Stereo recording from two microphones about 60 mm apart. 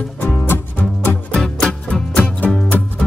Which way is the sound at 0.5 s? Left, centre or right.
Left.